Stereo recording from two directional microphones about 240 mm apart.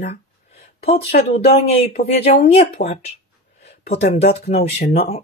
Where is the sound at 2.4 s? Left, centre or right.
Left.